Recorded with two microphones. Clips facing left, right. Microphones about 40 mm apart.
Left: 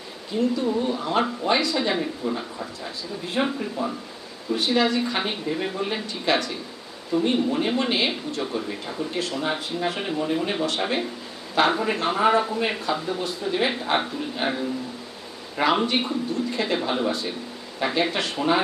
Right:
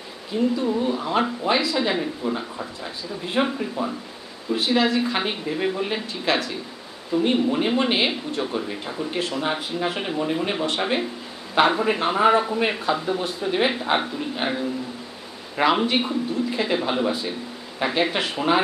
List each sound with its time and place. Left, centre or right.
0.4 s speech: centre
9.2 s speech: right
9.5 s speech: centre
12.9 s speech: right
13.7 s speech: centre